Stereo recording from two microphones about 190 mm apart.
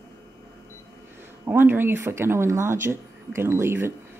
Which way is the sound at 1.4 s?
10° right (ahead or behind).